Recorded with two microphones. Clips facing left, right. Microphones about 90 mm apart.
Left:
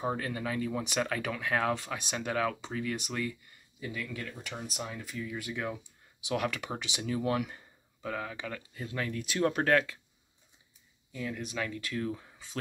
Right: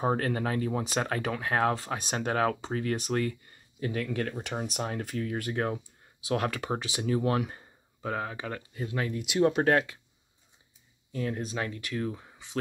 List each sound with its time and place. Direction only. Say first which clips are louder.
0.0 s speech: right 5 dB; 55° right (ahead or behind)
6.2 s speech: right 3 dB; 35° right (ahead or behind)
11.1 s speech: right 5 dB; 45° right (ahead or behind); by 12.5 s 25° right (ahead or behind)